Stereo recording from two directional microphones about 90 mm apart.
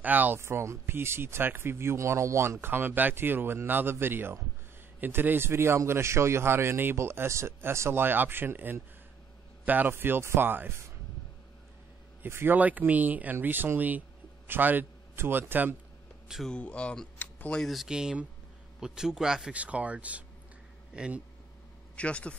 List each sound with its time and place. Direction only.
0.0 s speech: 20° right (ahead or behind)
12.2 s speech: 25° right (ahead or behind)
16.4 s speech: 10° left (ahead or behind)
17.2 s a sound: 20° left (ahead or behind)
17.6 s speech: centre (ahead or behind)
21.9 s speech: 15° left (ahead or behind)